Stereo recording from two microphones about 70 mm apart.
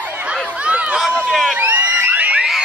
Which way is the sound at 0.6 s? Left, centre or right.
Centre.